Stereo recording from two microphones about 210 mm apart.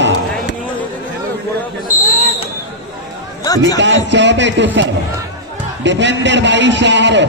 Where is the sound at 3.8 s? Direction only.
55° right (ahead or behind).